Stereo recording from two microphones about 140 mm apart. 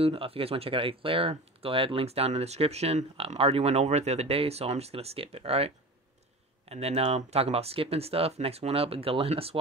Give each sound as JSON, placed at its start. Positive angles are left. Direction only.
{"t": 0.0, "sound": "speech", "side_deg": -45}
{"t": 6.7, "sound": "speech", "side_deg": -45}